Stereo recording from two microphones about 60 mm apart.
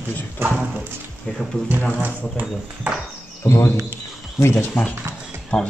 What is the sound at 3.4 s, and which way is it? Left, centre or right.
Speech, left.